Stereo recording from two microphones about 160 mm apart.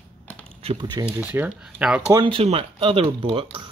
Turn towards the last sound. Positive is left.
turn(degrees=-30)  # may be behind; listen again after turning